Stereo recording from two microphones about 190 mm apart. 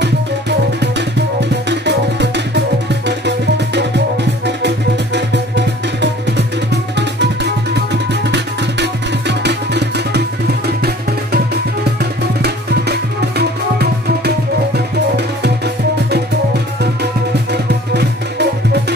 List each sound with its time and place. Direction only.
0.0 s music: 65° right (ahead or behind)
12.0 s music: 60° right (ahead or behind)
17.5 s music: 60° right (ahead or behind)